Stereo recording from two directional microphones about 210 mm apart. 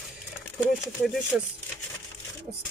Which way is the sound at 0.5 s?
Centre (ahead or behind).